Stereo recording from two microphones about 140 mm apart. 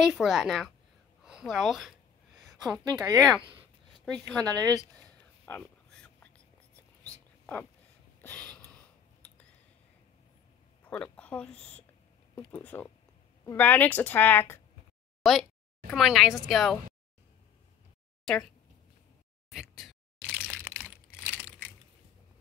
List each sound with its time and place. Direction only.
0.0 s a woman's voice: centre (ahead or behind)
1.2 s a sound: 5° right (ahead or behind)
2.9 s speech: 30° right (ahead or behind)
3.2 s a woman's voice: centre (ahead or behind)
5.4 s a sound: 10° left (ahead or behind)
8.2 s a sound: 10° left (ahead or behind)
10.9 s speech: 10° left (ahead or behind)
11.5 s a woman's voice: 50° left (ahead or behind)
12.4 s a woman's voice: 10° left (ahead or behind)
15.2 s a woman's voice: centre (ahead or behind)
18.2 s speech: 5° left (ahead or behind)
19.5 s a sound: 5° right (ahead or behind)